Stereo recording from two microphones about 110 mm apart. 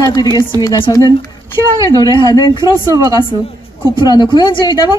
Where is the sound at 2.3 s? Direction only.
40° left (ahead or behind).